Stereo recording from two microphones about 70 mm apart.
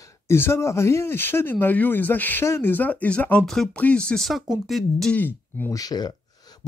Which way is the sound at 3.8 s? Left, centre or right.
Centre.